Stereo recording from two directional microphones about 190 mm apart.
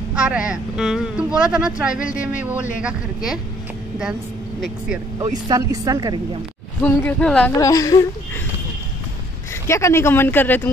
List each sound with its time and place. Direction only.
0.1 s speech: 5° right (ahead or behind)
5.2 s speech: 15° right (ahead or behind)
6.8 s speech: 10° left (ahead or behind)
7.5 s speech: 20° left (ahead or behind)
9.7 s speech: 15° left (ahead or behind)